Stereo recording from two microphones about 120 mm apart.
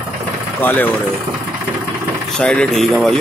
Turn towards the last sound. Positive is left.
turn(degrees=5)  # may be behind; listen again after turning